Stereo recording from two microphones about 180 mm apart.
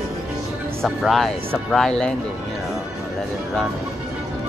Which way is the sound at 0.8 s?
Centre (ahead or behind).